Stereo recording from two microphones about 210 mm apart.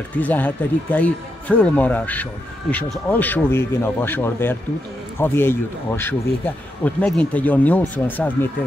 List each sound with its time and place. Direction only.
0.2 s speech: 10° left (ahead or behind)